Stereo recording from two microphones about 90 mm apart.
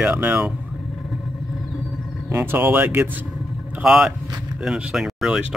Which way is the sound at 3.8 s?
5° right (ahead or behind).